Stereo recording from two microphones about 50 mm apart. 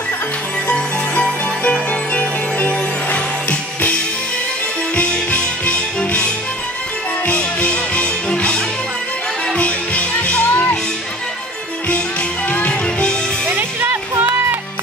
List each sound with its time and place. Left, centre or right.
0.7 s music: left
4.9 s music: left
12.4 s music: left
13.5 s music: right